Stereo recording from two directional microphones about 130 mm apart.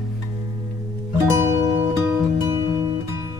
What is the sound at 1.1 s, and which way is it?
Music, 20° right (ahead or behind).